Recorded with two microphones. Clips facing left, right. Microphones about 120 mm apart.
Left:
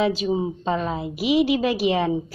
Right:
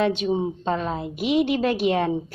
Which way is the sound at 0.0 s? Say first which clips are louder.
Even; 5° left (ahead or behind).